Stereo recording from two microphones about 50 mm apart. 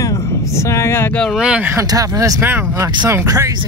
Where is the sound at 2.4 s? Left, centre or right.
Right.